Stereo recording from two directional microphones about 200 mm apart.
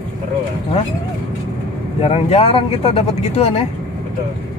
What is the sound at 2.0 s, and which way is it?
Speech, 30° left (ahead or behind).